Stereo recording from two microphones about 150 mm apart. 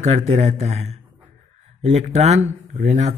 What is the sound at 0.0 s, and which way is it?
Speech, 50° right (ahead or behind).